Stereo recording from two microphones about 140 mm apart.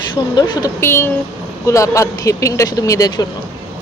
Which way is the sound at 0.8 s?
15° left (ahead or behind).